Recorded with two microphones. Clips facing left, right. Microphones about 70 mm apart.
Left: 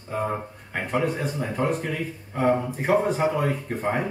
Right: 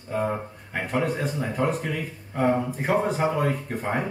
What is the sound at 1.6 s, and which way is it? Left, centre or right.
Speech, centre.